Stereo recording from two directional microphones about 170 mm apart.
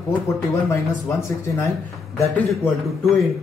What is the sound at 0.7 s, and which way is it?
Speech, 15° left (ahead or behind).